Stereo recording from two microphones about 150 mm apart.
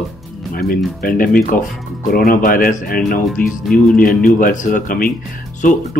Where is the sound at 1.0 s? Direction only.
70° left (ahead or behind).